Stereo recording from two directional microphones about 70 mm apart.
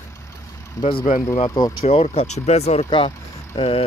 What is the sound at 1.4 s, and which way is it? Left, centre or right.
Speech, left.